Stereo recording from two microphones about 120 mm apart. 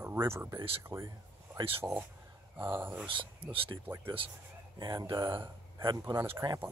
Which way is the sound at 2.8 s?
15° right (ahead or behind).